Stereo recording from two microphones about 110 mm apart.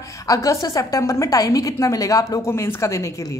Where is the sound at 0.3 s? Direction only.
30° left (ahead or behind).